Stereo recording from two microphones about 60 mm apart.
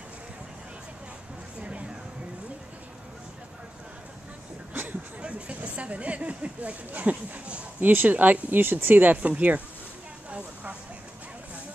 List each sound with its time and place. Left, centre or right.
1.6 s a sound: centre
5.2 s speech: right
10.3 s vehicle: right